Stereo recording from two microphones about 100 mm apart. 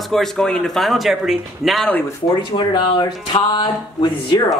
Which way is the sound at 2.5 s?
55° left (ahead or behind).